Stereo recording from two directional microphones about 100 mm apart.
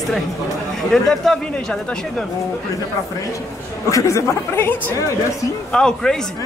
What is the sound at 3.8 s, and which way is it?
Speech, 30° left (ahead or behind).